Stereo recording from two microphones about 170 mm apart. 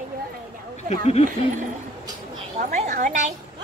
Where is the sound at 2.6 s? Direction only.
45° right (ahead or behind).